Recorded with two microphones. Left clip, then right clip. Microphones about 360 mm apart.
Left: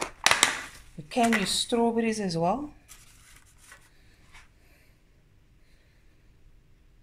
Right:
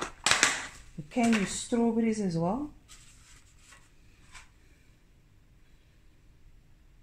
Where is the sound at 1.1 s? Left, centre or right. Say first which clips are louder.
Left 4 dB; left.